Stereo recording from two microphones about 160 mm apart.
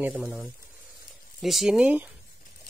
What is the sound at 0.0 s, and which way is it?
Speech, 10° right (ahead or behind).